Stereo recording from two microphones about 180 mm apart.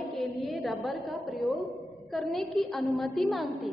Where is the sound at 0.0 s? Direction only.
Centre (ahead or behind).